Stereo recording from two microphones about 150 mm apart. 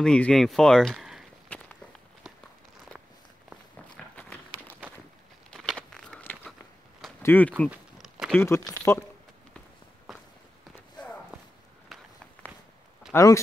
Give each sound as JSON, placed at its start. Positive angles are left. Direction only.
{"t": 0.0, "sound": "speech", "side_deg": 5}
{"t": 1.5, "sound": "walk", "side_deg": 10}
{"t": 3.9, "sound": "a sound", "side_deg": 5}
{"t": 5.5, "sound": "a sound", "side_deg": 5}
{"t": 7.2, "sound": "speech", "side_deg": 15}
{"t": 7.7, "sound": "a sound", "side_deg": -5}
{"t": 8.4, "sound": "speech", "side_deg": 20}
{"t": 10.1, "sound": "walk", "side_deg": 0}
{"t": 11.0, "sound": "walk", "side_deg": 30}
{"t": 13.1, "sound": "speech", "side_deg": 20}